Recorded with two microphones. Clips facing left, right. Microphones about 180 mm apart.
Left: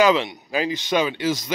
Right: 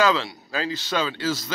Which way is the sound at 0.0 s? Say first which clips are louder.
Left 4 dB; 20° left (ahead or behind).